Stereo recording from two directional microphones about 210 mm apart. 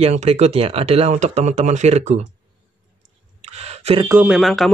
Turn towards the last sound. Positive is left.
turn(degrees=0)  # may be behind; listen again after turning